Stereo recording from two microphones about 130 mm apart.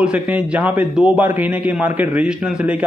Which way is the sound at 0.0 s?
10° right (ahead or behind).